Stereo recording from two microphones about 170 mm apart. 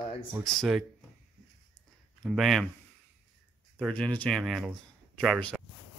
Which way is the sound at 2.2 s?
Centre (ahead or behind).